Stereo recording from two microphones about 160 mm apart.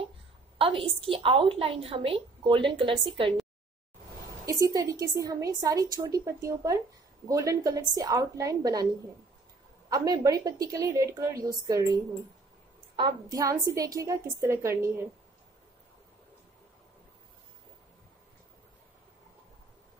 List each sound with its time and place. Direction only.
0.6 s a woman's voice: 35° right (ahead or behind)
4.5 s a woman's voice: 20° right (ahead or behind)
9.8 s a woman's voice: 25° right (ahead or behind)